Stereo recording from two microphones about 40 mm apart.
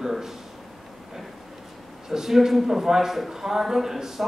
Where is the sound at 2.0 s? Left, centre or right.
Centre.